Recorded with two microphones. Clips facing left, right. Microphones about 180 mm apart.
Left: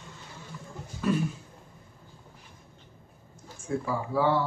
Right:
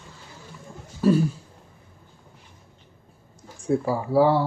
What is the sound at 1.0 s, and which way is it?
Throat clearing, 35° right (ahead or behind).